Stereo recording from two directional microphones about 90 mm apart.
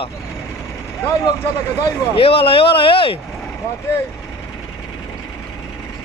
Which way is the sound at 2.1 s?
90° left.